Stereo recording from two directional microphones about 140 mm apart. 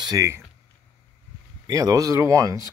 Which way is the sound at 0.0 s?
25° right (ahead or behind).